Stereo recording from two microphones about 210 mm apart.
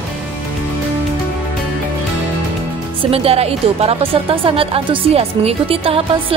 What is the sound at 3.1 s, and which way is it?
Speech, 30° right (ahead or behind).